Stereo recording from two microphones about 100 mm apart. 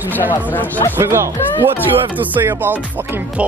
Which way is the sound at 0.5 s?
20° left (ahead or behind).